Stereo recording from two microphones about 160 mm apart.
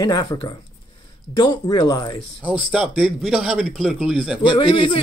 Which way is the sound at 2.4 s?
10° right (ahead or behind).